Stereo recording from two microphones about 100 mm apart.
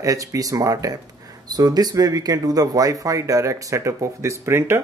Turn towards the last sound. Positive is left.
turn(degrees=-25)  # may be behind; listen again after turning